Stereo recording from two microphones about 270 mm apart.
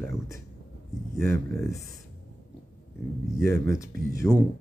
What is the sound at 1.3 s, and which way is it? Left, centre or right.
Speech, centre.